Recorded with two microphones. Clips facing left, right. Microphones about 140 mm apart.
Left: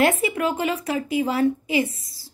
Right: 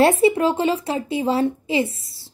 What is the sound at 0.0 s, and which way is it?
A woman's voice, 30° right (ahead or behind).